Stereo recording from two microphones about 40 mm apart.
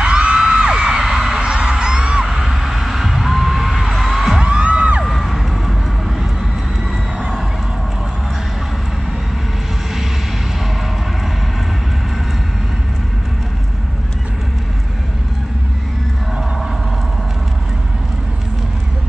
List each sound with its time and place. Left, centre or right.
0.0 s music: right
0.9 s heart sounds: centre
2.2 s a sound: centre
3.9 s music: centre
4.4 s music: right
5.0 s vehicle: centre